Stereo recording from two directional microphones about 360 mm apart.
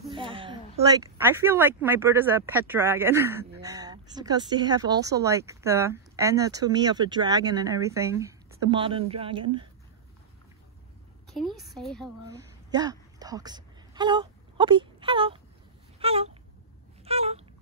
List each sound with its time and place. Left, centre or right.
0.1 s speech: centre
11.2 s a woman's voice: centre
12.3 s a woman's voice: centre
16.0 s a sound: centre
17.0 s dog: centre